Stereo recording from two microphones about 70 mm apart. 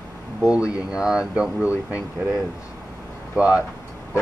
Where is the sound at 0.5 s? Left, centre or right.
Centre.